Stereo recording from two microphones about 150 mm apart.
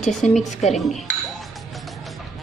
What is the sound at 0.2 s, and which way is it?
Speech, 50° left (ahead or behind).